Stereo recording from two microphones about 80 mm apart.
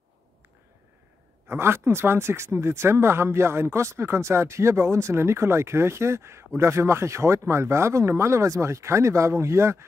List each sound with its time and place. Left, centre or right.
1.5 s speech: right